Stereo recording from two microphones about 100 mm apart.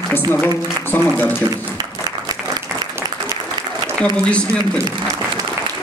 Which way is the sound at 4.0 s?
10° left (ahead or behind).